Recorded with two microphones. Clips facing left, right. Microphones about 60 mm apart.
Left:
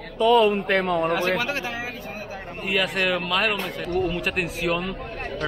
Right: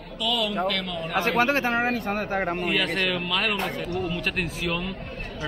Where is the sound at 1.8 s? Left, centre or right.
Right.